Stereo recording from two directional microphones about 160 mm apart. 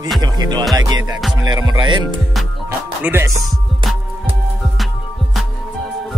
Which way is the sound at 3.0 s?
15° right (ahead or behind).